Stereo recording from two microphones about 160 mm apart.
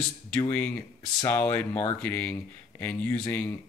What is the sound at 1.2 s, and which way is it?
Speech, 15° left (ahead or behind).